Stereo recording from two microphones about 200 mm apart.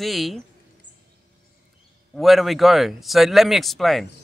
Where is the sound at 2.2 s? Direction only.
Centre (ahead or behind).